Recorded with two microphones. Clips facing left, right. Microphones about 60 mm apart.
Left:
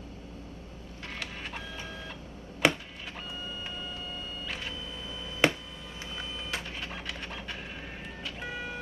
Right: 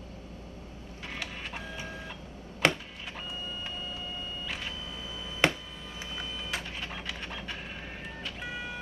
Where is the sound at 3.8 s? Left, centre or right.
Centre.